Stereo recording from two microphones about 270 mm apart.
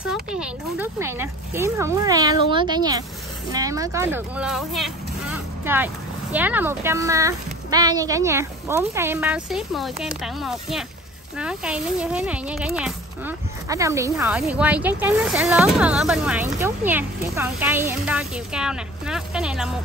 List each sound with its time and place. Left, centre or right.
0.4 s speech: centre